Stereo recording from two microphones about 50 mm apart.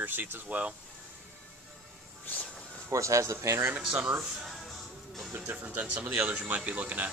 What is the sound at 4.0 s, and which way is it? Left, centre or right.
Speech, right.